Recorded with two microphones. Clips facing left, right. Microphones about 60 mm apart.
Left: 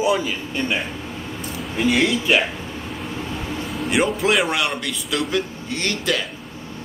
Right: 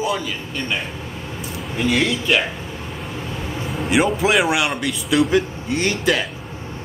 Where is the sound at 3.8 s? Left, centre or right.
Centre.